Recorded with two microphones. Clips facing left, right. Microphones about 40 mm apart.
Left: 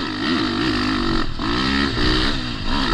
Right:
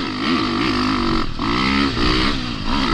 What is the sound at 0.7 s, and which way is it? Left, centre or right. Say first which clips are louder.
Didgeridoo: right 2 dB; centre.